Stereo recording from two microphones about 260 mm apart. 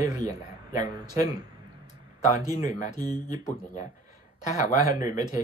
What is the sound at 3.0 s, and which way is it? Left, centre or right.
Speech, centre.